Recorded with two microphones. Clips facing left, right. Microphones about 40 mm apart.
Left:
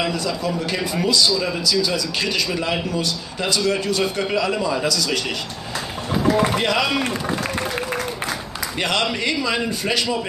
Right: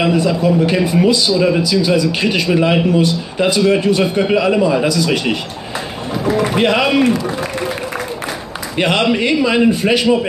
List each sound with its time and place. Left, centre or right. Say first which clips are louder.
0.0 s a man's voice: right 9 dB; right
6.5 s a man's voice: right 6 dB; right
8.7 s a man's voice: right 8 dB; right